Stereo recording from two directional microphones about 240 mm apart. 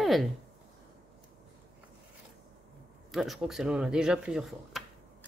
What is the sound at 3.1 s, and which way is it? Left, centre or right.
Speech, centre.